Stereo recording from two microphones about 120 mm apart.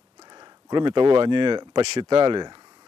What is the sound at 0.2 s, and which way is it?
Speech, 40° right (ahead or behind).